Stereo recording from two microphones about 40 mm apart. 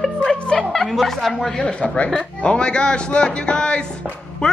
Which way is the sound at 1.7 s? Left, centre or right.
Left.